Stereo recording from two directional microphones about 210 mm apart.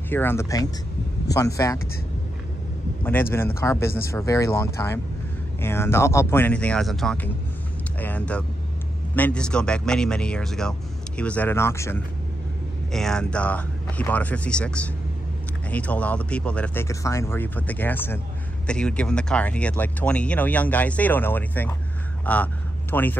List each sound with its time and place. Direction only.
0.1 s speech: 10° left (ahead or behind)
3.0 s speech: 10° left (ahead or behind)